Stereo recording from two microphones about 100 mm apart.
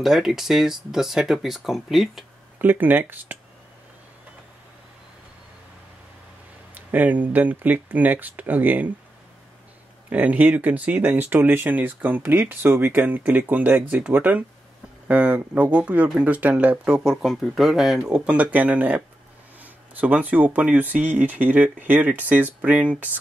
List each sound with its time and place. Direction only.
0.0 s speech: centre (ahead or behind)
2.6 s speech: 20° right (ahead or behind)
6.7 s speech: 15° right (ahead or behind)
10.0 s speech: 15° right (ahead or behind)